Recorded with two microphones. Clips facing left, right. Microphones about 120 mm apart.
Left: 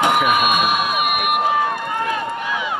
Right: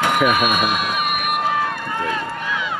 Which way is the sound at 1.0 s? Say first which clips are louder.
Left 2 dB; 10° left (ahead or behind).